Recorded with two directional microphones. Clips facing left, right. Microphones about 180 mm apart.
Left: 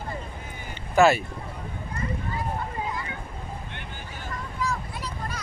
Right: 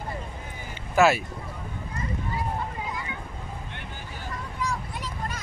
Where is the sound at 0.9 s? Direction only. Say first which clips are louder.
Left 2 dB; centre (ahead or behind).